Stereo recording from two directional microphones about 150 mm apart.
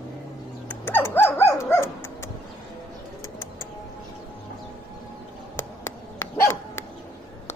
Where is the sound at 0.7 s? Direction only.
15° left (ahead or behind).